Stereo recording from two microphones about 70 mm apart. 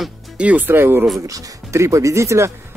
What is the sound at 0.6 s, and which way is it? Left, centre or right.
Speech, right.